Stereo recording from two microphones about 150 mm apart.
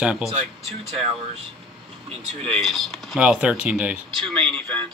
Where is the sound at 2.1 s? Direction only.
40° right (ahead or behind).